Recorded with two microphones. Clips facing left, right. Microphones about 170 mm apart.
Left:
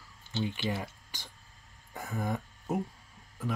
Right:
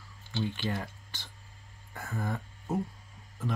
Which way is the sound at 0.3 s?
20° left (ahead or behind).